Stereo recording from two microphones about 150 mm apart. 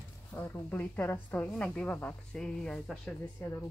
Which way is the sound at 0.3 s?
10° left (ahead or behind).